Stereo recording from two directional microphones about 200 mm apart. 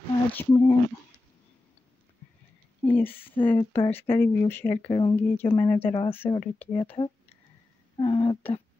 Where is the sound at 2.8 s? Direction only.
10° left (ahead or behind).